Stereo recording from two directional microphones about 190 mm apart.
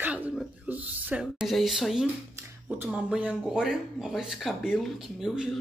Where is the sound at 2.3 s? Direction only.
10° right (ahead or behind).